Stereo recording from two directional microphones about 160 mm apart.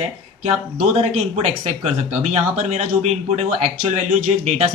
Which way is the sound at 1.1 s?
40° right (ahead or behind).